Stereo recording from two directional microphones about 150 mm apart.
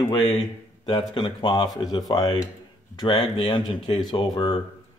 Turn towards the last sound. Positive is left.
turn(degrees=40)  # may be behind; listen again after turning